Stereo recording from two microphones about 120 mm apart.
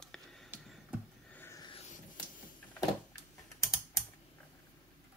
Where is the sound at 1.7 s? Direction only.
75° left (ahead or behind).